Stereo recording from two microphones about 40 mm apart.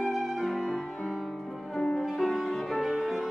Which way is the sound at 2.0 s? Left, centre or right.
Centre.